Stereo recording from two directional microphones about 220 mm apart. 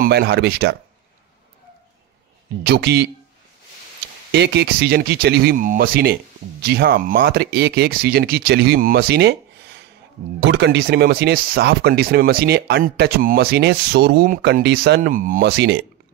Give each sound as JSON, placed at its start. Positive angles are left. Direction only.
{"t": 0.0, "sound": "speech", "side_deg": -45}
{"t": 2.6, "sound": "speech", "side_deg": -45}
{"t": 4.3, "sound": "speech", "side_deg": -50}